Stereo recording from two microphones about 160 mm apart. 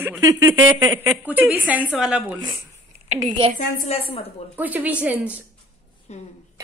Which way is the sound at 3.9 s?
35° left (ahead or behind).